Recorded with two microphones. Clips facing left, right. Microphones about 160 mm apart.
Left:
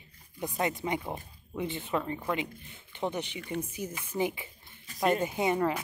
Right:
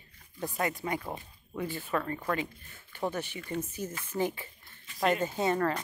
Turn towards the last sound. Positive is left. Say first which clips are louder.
# left 1 dB
turn(degrees=15)  # may be behind; listen again after turning